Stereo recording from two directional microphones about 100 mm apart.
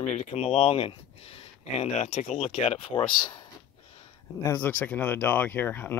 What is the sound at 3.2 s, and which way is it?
Speech, 45° left (ahead or behind).